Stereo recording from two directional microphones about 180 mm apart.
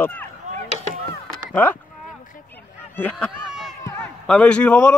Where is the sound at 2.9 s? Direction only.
10° left (ahead or behind).